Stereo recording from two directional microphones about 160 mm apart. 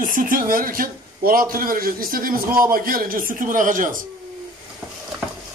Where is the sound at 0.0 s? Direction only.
60° right (ahead or behind).